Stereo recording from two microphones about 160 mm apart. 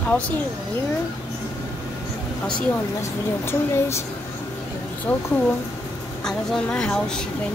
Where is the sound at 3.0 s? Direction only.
15° left (ahead or behind).